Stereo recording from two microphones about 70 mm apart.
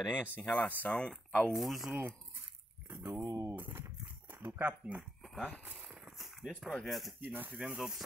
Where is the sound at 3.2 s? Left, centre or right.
Right.